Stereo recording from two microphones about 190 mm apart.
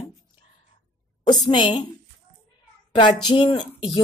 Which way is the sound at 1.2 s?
20° left (ahead or behind).